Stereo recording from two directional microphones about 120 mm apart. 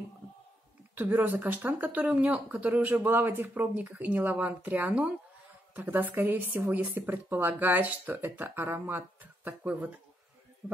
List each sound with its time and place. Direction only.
0.9 s speech: 15° right (ahead or behind)
10.6 s speech: 5° right (ahead or behind)